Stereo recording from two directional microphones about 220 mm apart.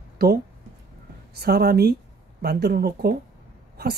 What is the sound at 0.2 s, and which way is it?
Speech, 45° right (ahead or behind).